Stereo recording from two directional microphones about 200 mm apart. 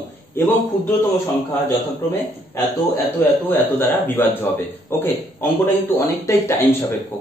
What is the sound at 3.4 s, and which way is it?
A man's voice, 10° left (ahead or behind).